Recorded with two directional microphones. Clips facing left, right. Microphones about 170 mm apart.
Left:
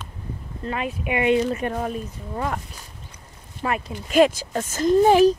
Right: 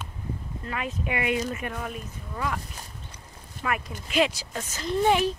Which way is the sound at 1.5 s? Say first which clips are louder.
Left 7 dB; 35° left (ahead or behind).